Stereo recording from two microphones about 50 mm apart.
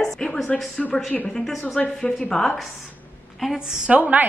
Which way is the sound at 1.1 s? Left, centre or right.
Centre.